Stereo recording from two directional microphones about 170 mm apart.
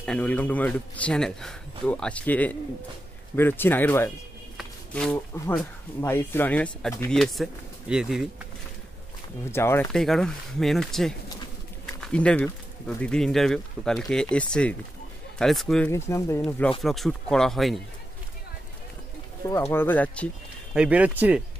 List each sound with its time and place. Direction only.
0.0 s speech: 10° left (ahead or behind)
4.6 s a sound: 5° left (ahead or behind)
5.9 s speech: 10° left (ahead or behind); by 8.3 s 5° right (ahead or behind)
9.5 s speech: 15° left (ahead or behind)
9.9 s speech: 5° left (ahead or behind)
15.9 s speech: 15° left (ahead or behind)
16.8 s speech: centre (ahead or behind)
19.5 s speech: 15° left (ahead or behind)
20.7 s speech: 5° right (ahead or behind)